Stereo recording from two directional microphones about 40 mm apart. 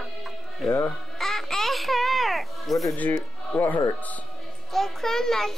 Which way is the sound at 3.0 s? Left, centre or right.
Left.